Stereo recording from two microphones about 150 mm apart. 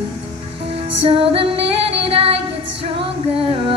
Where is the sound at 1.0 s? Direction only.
40° right (ahead or behind).